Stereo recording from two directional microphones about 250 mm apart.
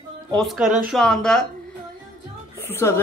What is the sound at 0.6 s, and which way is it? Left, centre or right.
Speech, right.